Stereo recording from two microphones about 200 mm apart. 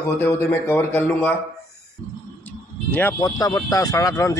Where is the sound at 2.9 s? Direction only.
15° left (ahead or behind).